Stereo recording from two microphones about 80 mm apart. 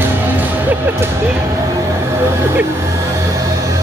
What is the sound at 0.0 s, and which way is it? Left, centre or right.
Music, right.